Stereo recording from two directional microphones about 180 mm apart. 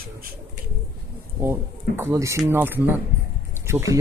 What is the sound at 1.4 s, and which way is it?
Speech, 15° right (ahead or behind).